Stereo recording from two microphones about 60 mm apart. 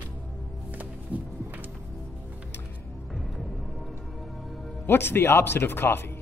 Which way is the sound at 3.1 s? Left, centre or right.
Centre.